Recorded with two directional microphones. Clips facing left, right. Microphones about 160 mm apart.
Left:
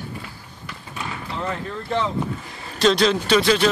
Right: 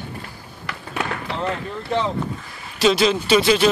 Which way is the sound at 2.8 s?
5° right (ahead or behind).